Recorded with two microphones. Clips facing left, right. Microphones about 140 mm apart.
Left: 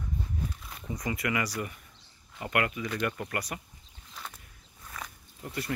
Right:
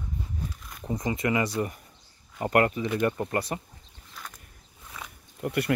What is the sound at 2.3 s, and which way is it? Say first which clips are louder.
Speech: right 7 dB; 40° right (ahead or behind).